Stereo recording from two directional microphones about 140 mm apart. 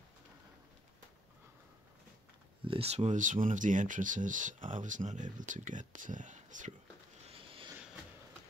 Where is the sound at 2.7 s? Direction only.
45° right (ahead or behind).